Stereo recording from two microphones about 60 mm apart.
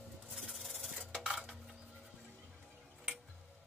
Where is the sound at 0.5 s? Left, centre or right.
Centre.